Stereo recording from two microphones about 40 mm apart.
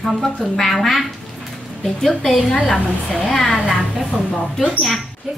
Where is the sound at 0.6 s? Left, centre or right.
Centre.